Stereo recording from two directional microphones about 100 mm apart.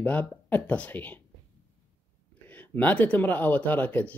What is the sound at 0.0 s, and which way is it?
Speech, 15° left (ahead or behind).